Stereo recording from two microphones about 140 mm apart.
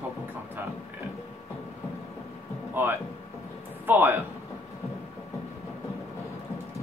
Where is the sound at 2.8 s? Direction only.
15° right (ahead or behind).